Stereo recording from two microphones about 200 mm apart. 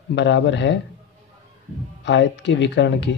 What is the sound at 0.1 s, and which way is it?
Speech, 60° left (ahead or behind).